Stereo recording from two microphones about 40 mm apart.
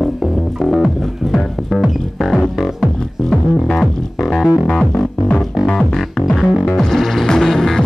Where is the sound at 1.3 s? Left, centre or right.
Centre.